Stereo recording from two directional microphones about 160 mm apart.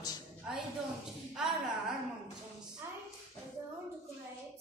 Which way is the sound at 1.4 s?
5° right (ahead or behind).